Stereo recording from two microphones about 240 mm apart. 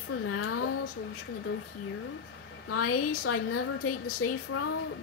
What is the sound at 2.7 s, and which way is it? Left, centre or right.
A woman's voice, left.